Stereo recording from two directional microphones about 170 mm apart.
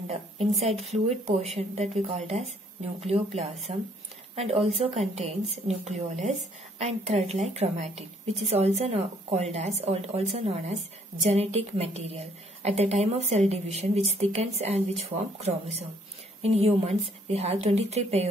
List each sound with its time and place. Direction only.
0.8 s a woman's voice: 40° right (ahead or behind)